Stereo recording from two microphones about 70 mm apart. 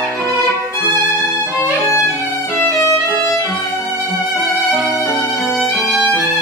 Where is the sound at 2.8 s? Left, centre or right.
Left.